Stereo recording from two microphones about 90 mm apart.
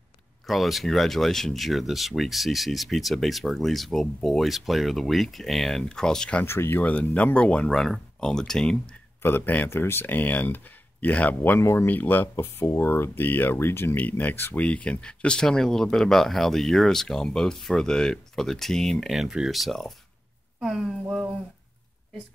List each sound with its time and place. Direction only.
0.5 s speech: centre (ahead or behind)
6.4 s speech: 30° left (ahead or behind)
6.8 s speech: 15° left (ahead or behind)
9.2 s speech: 20° left (ahead or behind); by 21.3 s 5° right (ahead or behind)